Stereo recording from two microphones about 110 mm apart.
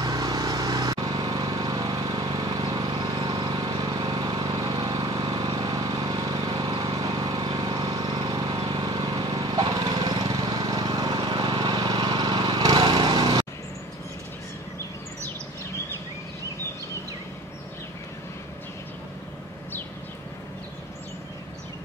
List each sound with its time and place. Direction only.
0.0 s vehicle: 35° right (ahead or behind)